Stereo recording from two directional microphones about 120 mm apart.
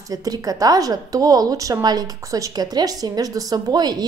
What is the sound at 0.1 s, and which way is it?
A woman's voice, 30° right (ahead or behind).